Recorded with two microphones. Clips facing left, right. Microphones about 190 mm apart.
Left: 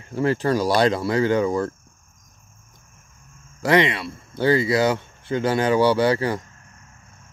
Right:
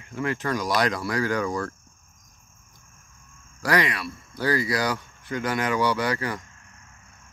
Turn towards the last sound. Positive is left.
turn(degrees=30)  # may be behind; listen again after turning